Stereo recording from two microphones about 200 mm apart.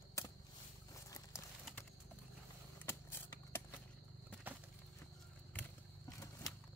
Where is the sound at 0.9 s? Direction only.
15° left (ahead or behind).